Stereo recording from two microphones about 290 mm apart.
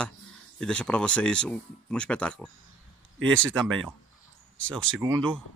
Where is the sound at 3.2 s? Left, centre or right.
Right.